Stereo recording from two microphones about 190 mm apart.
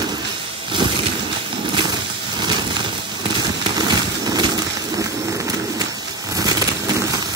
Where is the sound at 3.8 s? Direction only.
20° right (ahead or behind).